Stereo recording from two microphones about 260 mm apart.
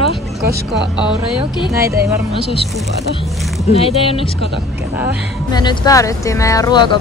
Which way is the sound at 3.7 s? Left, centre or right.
Left.